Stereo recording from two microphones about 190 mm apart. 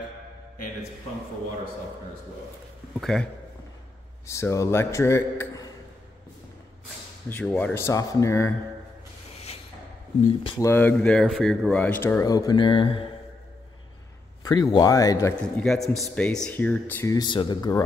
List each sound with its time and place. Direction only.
3.0 s a man's voice: centre (ahead or behind)
4.3 s speech: 15° left (ahead or behind)
7.2 s speech: 10° left (ahead or behind)
10.4 s a man's voice: 25° left (ahead or behind)
10.7 s speech: 10° left (ahead or behind); by 13.1 s 30° left (ahead or behind)
14.4 s a man's voice: 20° left (ahead or behind)
15.4 s a man's voice: centre (ahead or behind); by 17.8 s 20° left (ahead or behind)